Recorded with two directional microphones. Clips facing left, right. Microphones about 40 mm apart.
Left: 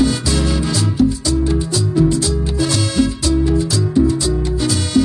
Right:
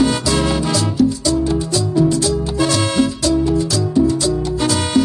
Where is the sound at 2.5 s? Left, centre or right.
Right.